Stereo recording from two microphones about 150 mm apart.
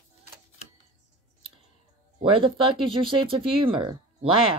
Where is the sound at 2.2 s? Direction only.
35° right (ahead or behind).